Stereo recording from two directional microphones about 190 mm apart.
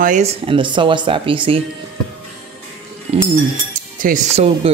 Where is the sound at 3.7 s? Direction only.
45° right (ahead or behind).